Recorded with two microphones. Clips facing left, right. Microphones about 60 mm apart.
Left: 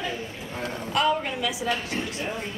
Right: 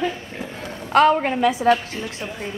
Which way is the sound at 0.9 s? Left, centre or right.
Right.